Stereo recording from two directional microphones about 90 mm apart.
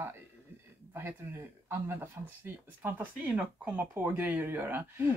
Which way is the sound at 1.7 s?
25° right (ahead or behind).